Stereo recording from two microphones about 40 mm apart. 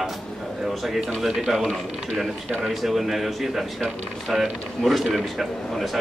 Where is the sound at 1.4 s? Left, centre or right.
Centre.